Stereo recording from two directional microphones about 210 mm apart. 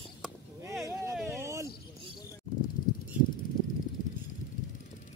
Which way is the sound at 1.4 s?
15° right (ahead or behind).